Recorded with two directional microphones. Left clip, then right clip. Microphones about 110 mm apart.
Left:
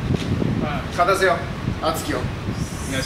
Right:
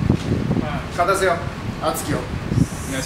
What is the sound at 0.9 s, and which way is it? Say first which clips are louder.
Speech: left 1 dB; 5° right (ahead or behind).